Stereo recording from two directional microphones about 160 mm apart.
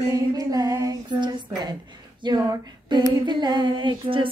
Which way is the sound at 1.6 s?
25° right (ahead or behind).